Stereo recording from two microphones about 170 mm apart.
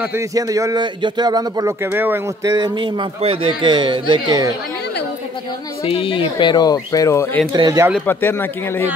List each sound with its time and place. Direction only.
0.0 s speech: 15° right (ahead or behind)
2.5 s speech: 25° right (ahead or behind)
5.9 s speech: 30° left (ahead or behind); by 7.4 s 15° left (ahead or behind)
7.5 s speech: 25° right (ahead or behind)
8.1 s speech: 10° left (ahead or behind)